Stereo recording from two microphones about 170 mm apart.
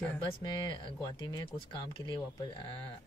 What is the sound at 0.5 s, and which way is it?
Speech, 25° left (ahead or behind).